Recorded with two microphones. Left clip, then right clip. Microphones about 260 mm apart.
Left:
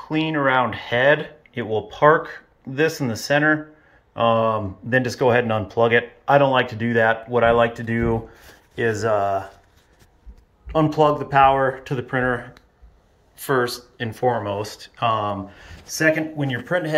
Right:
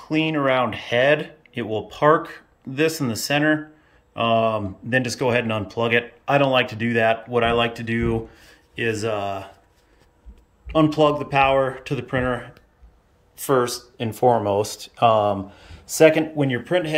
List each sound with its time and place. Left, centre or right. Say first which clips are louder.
0.0 s speech: even; centre
10.7 s speech: even; centre
13.5 s speech: right 1 dB; centre